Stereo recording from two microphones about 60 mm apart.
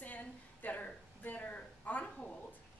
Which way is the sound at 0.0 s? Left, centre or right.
Left.